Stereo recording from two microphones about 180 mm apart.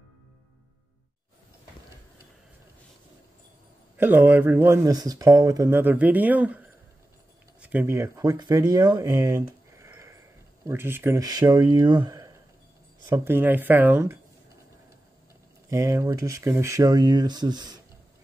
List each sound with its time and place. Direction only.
3.9 s speech: 10° right (ahead or behind)
7.6 s speech: 10° right (ahead or behind)
15.7 s speech: 15° right (ahead or behind)